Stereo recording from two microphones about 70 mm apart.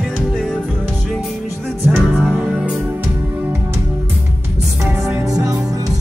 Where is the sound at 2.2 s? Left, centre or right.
Centre.